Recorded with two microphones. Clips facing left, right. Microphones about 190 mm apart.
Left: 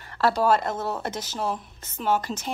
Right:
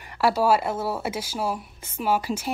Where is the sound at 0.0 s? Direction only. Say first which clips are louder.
Right 1 dB; 10° right (ahead or behind).